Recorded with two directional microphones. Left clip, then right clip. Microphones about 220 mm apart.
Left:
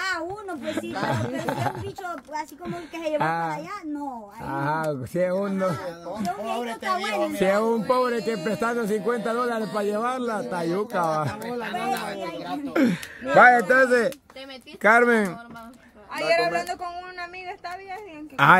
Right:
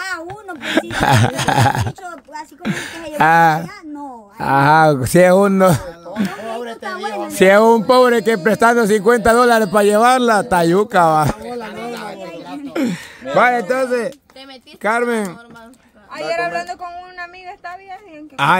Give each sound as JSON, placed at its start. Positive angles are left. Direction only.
{"t": 0.3, "sound": "speech", "side_deg": -40}
{"t": 6.6, "sound": "speech", "side_deg": -10}
{"t": 7.3, "sound": "a man's voice", "side_deg": -45}
{"t": 11.6, "sound": "a sound", "side_deg": -5}
{"t": 12.7, "sound": "speech", "side_deg": -10}